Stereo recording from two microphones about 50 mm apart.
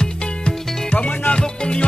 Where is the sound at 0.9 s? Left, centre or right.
Left.